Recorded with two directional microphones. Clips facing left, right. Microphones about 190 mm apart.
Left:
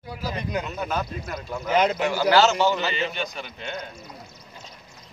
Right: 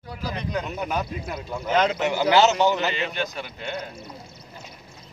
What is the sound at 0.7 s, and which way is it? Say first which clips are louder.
A man's voice: right 1 dB; 15° right (ahead or behind).